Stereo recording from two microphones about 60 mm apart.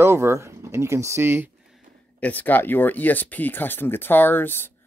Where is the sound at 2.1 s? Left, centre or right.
Left.